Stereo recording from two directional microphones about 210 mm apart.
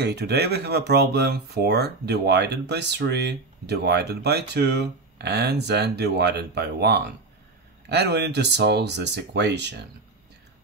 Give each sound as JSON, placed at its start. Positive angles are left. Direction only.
{"t": 0.0, "sound": "speech", "side_deg": -50}